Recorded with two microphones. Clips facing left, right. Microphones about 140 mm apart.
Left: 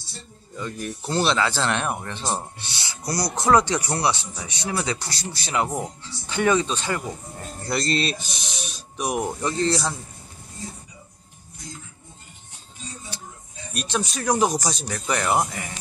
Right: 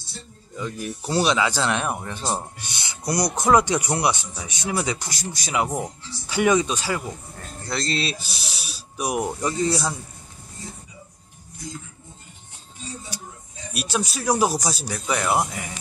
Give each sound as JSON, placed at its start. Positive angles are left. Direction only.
{"t": 0.6, "sound": "speech", "side_deg": -5}
{"t": 2.7, "sound": "speech", "side_deg": -20}
{"t": 7.6, "sound": "speech", "side_deg": 0}
{"t": 13.7, "sound": "speech", "side_deg": -10}